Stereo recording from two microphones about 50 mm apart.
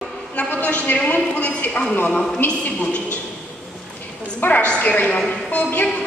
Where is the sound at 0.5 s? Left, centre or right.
Left.